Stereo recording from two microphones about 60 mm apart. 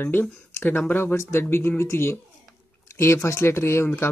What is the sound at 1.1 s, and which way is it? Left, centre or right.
Speech, left.